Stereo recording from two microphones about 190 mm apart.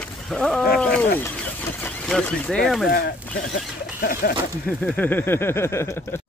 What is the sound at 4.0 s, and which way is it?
Speech, 50° left (ahead or behind).